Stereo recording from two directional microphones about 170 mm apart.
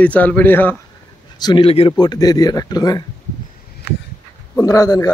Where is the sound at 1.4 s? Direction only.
30° left (ahead or behind).